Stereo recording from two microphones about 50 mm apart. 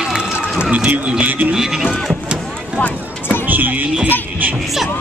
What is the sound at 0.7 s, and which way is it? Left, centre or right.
Speech, right.